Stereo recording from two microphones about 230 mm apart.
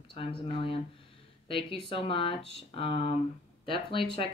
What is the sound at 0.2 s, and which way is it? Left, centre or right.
Speech, left.